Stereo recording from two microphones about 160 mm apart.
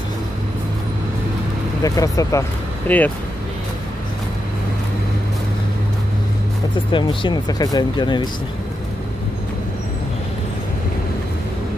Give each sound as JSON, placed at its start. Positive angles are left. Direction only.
{"t": 1.8, "sound": "speech", "side_deg": 20}
{"t": 2.9, "sound": "speech", "side_deg": 10}
{"t": 6.9, "sound": "speech", "side_deg": 30}